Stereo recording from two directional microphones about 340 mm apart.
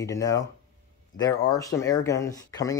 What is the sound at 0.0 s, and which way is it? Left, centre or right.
Speech, centre.